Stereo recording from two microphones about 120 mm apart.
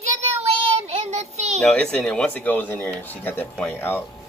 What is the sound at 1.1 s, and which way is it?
Child singing, 65° right (ahead or behind).